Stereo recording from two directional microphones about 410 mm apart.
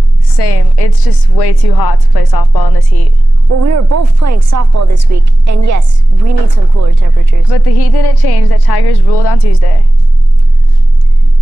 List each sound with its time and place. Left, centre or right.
0.4 s a woman's voice: left
3.6 s speech: right
7.5 s a woman's voice: left